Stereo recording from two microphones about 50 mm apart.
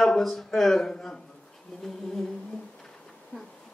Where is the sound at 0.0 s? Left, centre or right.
Centre.